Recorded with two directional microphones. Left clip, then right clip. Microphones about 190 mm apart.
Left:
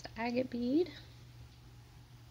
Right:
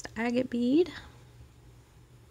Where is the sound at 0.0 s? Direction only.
40° right (ahead or behind).